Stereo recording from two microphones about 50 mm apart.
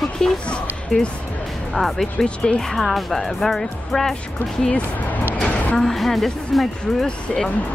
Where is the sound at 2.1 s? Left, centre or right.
Left.